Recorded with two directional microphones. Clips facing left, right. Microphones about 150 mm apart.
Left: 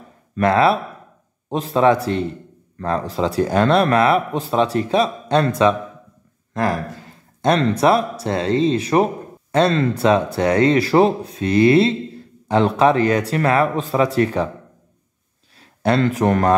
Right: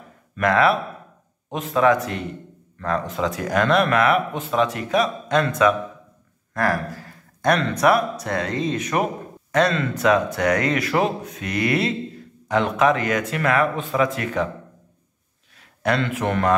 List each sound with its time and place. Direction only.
0.4 s speech: 30° left (ahead or behind)
15.8 s speech: 35° left (ahead or behind)